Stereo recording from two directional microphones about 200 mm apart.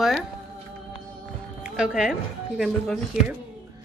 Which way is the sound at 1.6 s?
5° right (ahead or behind).